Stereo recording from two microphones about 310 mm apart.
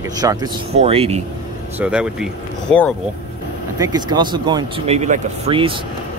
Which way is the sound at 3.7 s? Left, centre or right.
Centre.